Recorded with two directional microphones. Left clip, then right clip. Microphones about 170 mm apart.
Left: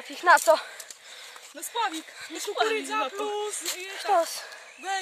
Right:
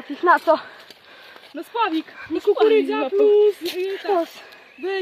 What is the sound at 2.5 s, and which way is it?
Speech, 75° left (ahead or behind).